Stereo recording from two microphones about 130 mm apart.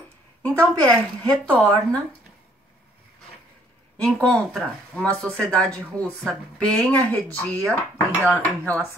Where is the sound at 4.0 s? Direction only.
10° left (ahead or behind).